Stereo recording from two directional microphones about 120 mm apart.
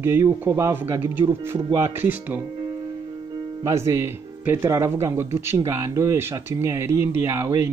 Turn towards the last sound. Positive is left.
turn(degrees=-25)  # may be behind; listen again after turning